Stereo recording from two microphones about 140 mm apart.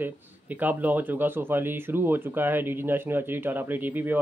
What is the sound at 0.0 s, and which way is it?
Speech, 10° right (ahead or behind).